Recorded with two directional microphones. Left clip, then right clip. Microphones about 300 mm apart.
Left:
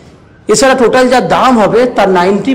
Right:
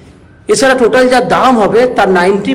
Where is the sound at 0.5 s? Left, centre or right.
Centre.